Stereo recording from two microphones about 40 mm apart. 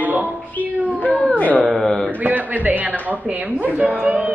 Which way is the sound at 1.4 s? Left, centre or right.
Left.